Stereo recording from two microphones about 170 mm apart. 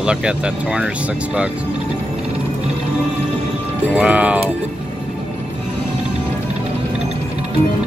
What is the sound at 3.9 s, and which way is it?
Speech, 5° right (ahead or behind).